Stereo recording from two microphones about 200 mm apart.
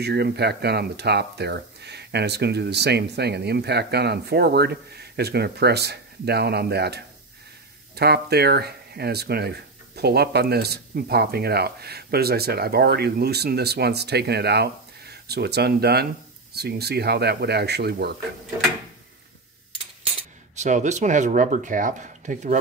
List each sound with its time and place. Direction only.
0.0 s speech: 55° right (ahead or behind)
20.5 s speech: 35° right (ahead or behind)